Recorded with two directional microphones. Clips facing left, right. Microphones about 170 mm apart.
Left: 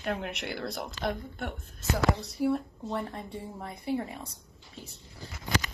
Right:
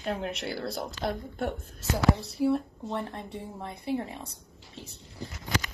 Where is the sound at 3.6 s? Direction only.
30° right (ahead or behind).